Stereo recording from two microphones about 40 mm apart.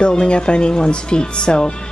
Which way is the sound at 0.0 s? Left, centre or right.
Left.